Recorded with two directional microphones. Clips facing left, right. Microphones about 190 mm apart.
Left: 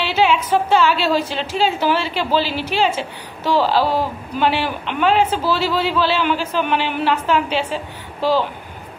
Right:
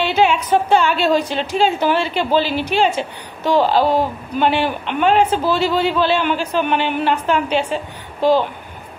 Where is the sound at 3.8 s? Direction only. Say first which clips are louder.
Right 3 dB; 15° right (ahead or behind).